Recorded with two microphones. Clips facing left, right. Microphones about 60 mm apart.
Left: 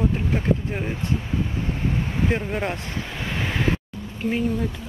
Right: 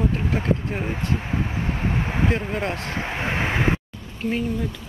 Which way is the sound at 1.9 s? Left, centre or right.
Right.